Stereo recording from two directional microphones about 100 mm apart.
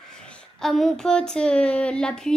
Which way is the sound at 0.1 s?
10° left (ahead or behind).